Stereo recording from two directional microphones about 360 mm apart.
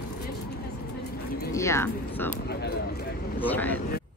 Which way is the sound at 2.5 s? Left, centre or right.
Left.